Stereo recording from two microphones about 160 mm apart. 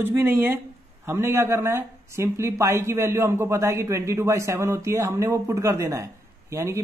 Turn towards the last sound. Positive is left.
turn(degrees=-20)  # may be behind; listen again after turning